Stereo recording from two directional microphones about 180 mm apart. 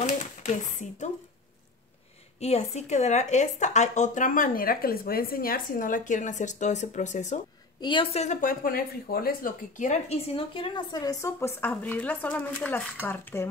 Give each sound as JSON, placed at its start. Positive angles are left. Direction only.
{"t": 0.0, "sound": "speech", "side_deg": 40}
{"t": 2.4, "sound": "speech", "side_deg": 35}
{"t": 7.8, "sound": "a woman's voice", "side_deg": 30}